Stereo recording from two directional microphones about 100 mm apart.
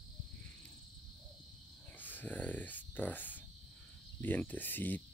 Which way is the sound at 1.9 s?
15° left (ahead or behind).